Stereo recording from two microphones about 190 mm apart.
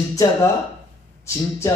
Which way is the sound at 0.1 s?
15° left (ahead or behind).